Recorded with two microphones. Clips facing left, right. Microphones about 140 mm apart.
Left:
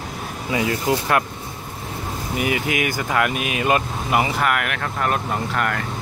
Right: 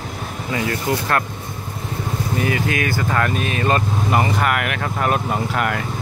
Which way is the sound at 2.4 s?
15° left (ahead or behind).